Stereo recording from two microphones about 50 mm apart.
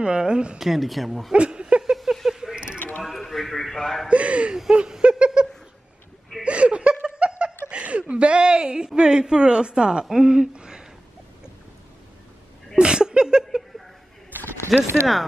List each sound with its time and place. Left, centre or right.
0.0 s speech: centre
0.6 s speech: centre
1.3 s a sound: right
2.2 s mechanisms: centre
2.5 s mechanisms: centre
3.0 s a man's voice: centre
4.1 s speech: right
4.6 s a sound: centre
6.4 s laughter: right
7.7 s a woman's voice: right
12.7 s a sound: centre
14.3 s a sound: right
14.7 s speech: centre